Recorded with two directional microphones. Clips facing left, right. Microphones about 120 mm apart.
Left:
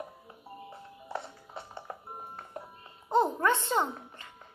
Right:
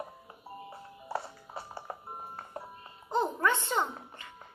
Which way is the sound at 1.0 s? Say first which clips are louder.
Right 2 dB; 5° right (ahead or behind).